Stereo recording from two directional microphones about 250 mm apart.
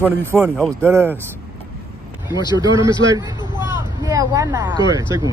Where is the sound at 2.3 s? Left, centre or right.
Centre.